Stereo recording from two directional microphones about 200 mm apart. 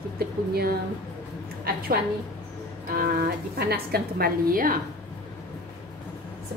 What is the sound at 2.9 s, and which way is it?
A woman's voice, 50° right (ahead or behind).